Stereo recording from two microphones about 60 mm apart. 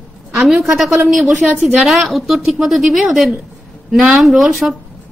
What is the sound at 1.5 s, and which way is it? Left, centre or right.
Speech, right.